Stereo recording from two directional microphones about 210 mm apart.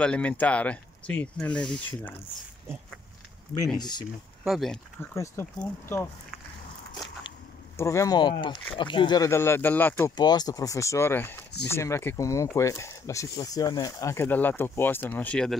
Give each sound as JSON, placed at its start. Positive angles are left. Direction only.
{"t": 0.0, "sound": "speech", "side_deg": 5}
{"t": 3.7, "sound": "speech", "side_deg": 20}
{"t": 4.5, "sound": "speech", "side_deg": 0}
{"t": 5.1, "sound": "speech", "side_deg": 15}
{"t": 7.7, "sound": "speech", "side_deg": 15}